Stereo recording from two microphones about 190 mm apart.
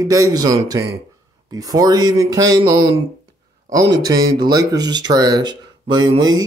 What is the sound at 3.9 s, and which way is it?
Speech, 20° right (ahead or behind).